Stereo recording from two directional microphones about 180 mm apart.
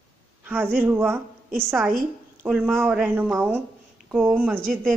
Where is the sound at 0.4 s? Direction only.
10° right (ahead or behind).